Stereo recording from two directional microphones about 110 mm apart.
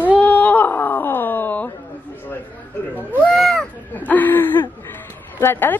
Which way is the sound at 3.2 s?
Centre (ahead or behind).